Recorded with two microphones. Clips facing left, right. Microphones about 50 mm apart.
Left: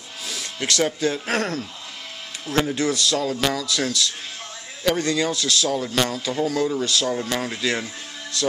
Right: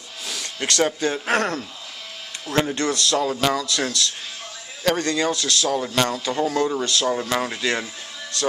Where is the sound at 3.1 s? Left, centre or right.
Right.